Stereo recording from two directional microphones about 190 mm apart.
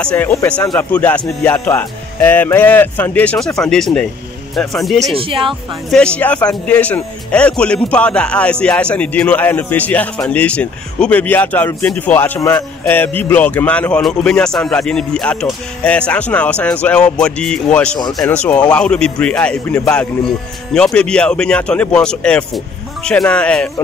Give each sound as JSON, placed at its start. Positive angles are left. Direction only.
{"t": 0.0, "sound": "speech", "side_deg": 10}
{"t": 5.1, "sound": "speech", "side_deg": -30}
{"t": 5.5, "sound": "speech", "side_deg": 5}